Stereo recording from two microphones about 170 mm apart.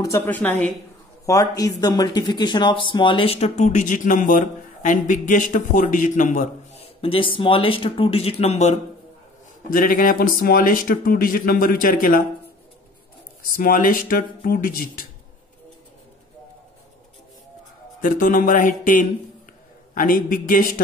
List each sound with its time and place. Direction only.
0.0 s a woman's voice: 15° left (ahead or behind)
1.2 s speech: 20° left (ahead or behind); by 6.8 s 50° left (ahead or behind)
6.8 s speech: 35° left (ahead or behind)
9.7 s speech: 55° left (ahead or behind)
13.6 s speech: 55° left (ahead or behind)
18.0 s speech: 50° left (ahead or behind)